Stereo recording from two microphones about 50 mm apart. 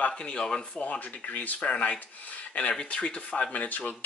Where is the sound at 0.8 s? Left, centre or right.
Left.